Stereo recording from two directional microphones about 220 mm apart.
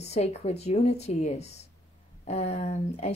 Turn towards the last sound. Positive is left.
turn(degrees=30)  # may be behind; listen again after turning